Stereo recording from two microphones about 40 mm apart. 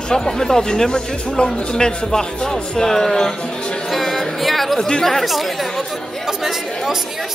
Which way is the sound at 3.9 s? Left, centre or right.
Centre.